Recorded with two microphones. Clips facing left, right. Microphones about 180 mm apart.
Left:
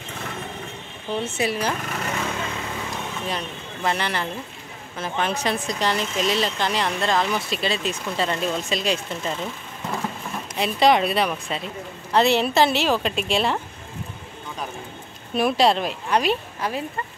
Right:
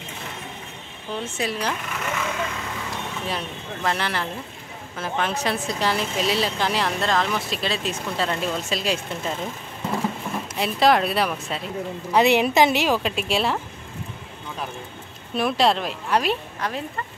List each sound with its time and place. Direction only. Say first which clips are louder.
1.2 s speech: left 2 dB; 5° left (ahead or behind)
1.9 s a sound: left 1 dB; 40° left (ahead or behind)
3.3 s speech: even; centre (ahead or behind)
10.5 s a woman's voice: left 1 dB; centre (ahead or behind)
15.3 s speech: left 2 dB; centre (ahead or behind)